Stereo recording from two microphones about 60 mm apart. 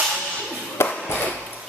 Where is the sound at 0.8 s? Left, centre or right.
Left.